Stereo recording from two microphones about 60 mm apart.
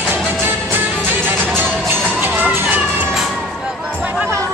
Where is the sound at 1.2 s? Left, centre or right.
Right.